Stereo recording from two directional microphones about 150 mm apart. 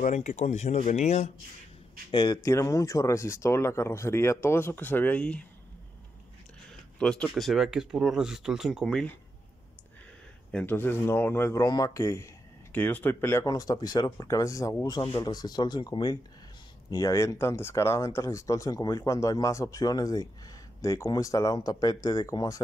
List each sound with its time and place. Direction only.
0.0 s speech: 55° left (ahead or behind)
2.0 s speech: 30° left (ahead or behind)
2.4 s speech: 20° left (ahead or behind)
7.0 s speech: 5° left (ahead or behind)
10.5 s speech: 15° left (ahead or behind)
11.6 s speech: 25° left (ahead or behind)